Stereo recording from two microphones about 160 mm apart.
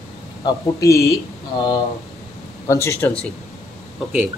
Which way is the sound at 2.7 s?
15° left (ahead or behind).